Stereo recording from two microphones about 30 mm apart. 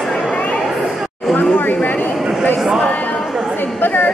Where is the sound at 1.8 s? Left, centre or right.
Left.